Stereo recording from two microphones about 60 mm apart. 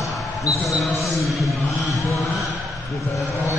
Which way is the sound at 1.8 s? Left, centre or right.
Left.